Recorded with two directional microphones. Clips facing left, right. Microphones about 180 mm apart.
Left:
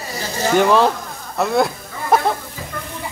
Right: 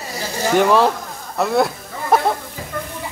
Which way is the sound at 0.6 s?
Centre (ahead or behind).